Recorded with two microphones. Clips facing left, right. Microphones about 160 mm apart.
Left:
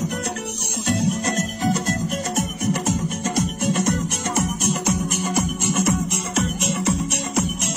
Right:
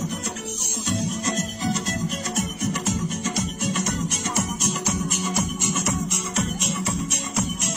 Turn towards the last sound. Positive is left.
turn(degrees=70)  # may be behind; listen again after turning